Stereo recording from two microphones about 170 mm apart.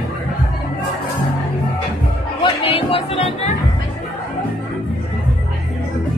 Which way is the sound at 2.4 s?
35° left (ahead or behind).